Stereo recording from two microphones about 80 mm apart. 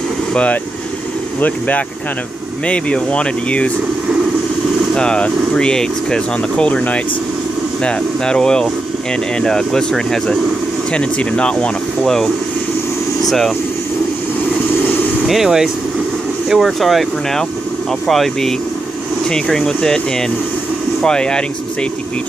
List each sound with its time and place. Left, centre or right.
0.3 s speech: centre
2.6 s speech: centre
4.9 s speech: centre
15.2 s speech: centre